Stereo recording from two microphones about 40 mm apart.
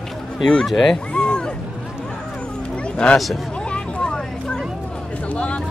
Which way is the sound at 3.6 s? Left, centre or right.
Left.